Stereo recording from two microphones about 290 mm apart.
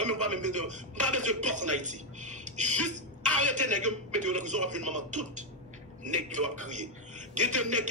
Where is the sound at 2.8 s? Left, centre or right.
Right.